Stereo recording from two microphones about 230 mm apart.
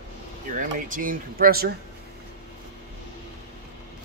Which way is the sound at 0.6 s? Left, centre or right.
Right.